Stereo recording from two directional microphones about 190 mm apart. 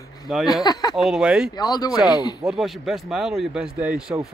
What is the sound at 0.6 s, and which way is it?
Speech, 20° left (ahead or behind).